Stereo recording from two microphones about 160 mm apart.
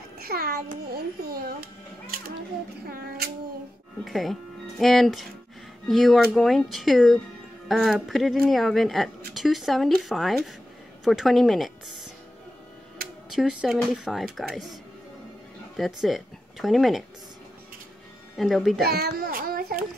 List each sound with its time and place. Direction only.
0.2 s a child's voice: 75° right (ahead or behind)
4.0 s speech: centre (ahead or behind)
13.3 s speech: 5° right (ahead or behind)
18.3 s speech: centre (ahead or behind)
18.9 s a child's voice: 75° right (ahead or behind)